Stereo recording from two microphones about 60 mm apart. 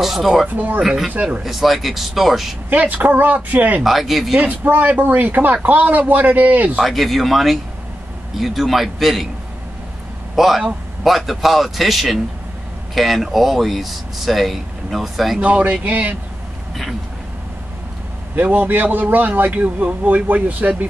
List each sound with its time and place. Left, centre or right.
0.0 s speech: centre
0.5 s speech: right
0.8 s speech: centre
1.1 s speech: right
1.4 s speech: centre
2.7 s speech: right
3.8 s speech: centre
4.4 s speech: right
6.8 s speech: centre
10.3 s speech: centre
15.4 s speech: right
18.3 s speech: right